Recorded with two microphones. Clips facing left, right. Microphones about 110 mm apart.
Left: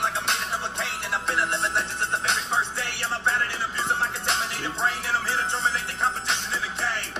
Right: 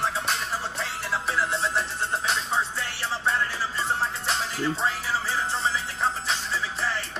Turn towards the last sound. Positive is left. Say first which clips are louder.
# even
turn(degrees=0)  # may be behind; listen again after turning